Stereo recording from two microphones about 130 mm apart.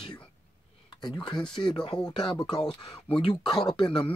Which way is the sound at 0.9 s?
35° left (ahead or behind).